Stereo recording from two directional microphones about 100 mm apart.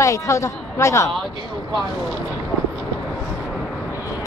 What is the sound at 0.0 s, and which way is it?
Speech, 30° left (ahead or behind).